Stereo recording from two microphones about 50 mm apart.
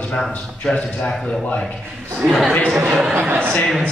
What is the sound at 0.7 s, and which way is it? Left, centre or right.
Speech, centre.